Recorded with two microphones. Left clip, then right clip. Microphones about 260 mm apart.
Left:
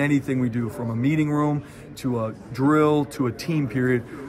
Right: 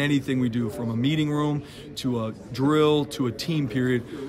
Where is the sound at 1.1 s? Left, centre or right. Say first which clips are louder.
Left 3 dB; centre.